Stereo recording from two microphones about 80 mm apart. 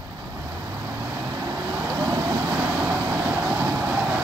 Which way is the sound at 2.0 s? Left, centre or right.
Right.